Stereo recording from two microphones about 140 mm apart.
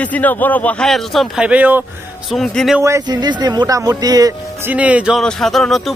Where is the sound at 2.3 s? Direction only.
5° left (ahead or behind).